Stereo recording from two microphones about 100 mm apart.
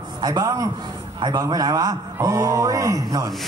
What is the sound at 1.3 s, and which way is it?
A man's voice, 40° right (ahead or behind).